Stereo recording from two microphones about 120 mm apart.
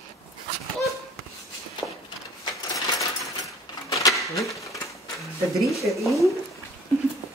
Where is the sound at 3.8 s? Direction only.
30° left (ahead or behind).